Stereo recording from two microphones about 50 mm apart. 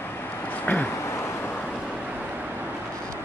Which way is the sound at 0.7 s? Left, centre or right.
Left.